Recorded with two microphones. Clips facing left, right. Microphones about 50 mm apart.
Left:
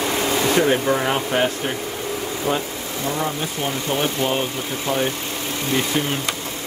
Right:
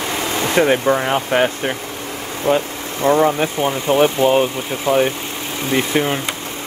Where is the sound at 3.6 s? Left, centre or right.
Right.